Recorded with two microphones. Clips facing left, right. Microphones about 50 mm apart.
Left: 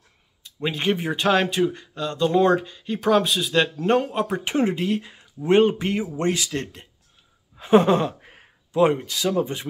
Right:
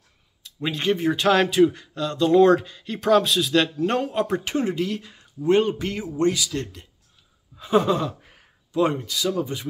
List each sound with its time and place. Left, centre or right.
0.4 s speech: centre
4.5 s speech: left